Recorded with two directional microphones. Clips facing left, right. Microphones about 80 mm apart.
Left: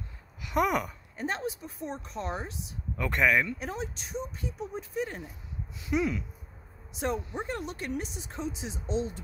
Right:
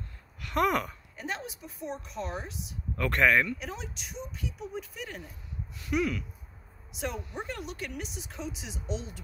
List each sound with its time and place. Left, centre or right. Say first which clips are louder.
0.4 s speech: even; centre
1.1 s speech: left 5 dB; left
3.0 s speech: right 1 dB; centre
3.5 s speech: left 4 dB; left
5.8 s speech: left 1 dB; left
6.9 s speech: left 4 dB; left